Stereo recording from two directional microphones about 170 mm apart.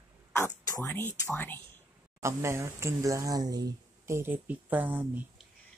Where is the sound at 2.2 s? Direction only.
15° right (ahead or behind).